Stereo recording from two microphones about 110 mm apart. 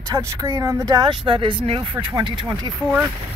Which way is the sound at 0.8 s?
40° right (ahead or behind).